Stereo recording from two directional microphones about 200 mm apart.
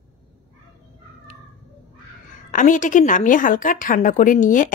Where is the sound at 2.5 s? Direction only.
40° left (ahead or behind).